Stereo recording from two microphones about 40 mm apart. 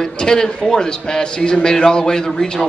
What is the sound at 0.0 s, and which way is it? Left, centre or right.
A man's voice, centre.